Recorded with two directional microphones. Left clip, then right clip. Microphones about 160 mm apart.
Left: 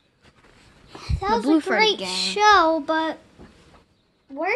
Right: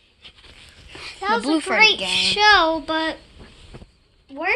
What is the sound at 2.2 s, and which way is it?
Speech, 70° left (ahead or behind).